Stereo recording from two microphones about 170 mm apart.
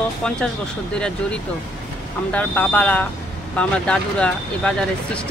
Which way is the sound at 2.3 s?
10° left (ahead or behind).